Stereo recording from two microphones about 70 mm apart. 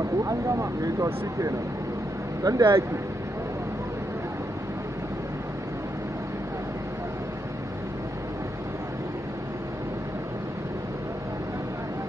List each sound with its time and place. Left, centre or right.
0.2 s speech: right